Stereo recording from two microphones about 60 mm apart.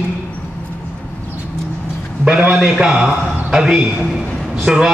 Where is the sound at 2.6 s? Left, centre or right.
Centre.